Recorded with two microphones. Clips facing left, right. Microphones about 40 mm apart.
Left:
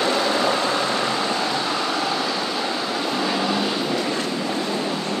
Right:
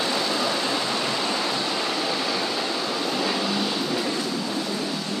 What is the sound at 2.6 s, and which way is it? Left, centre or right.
Vehicle, centre.